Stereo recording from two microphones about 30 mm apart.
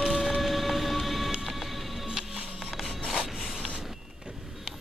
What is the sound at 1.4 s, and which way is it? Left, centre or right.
Vehicle, centre.